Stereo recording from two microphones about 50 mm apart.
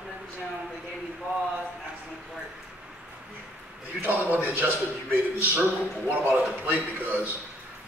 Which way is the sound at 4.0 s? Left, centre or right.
Right.